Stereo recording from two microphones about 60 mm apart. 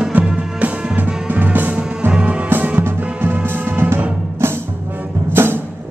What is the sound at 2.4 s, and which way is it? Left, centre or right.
Music, right.